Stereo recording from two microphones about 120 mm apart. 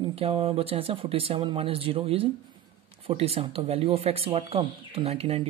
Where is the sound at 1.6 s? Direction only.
50° right (ahead or behind).